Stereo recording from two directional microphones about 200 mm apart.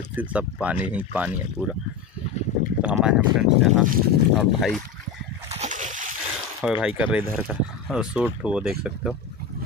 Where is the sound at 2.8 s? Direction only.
5° right (ahead or behind).